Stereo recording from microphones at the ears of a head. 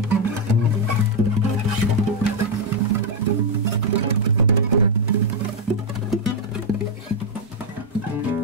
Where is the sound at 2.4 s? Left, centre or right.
Right.